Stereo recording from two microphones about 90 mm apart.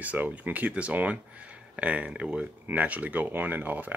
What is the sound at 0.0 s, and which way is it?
Speech, 15° right (ahead or behind).